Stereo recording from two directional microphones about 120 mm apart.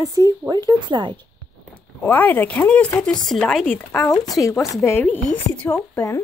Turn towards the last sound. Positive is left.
turn(degrees=25)  # may be behind; listen again after turning